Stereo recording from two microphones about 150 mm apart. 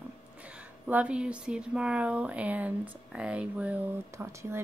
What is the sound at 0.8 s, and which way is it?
Speech, 10° right (ahead or behind).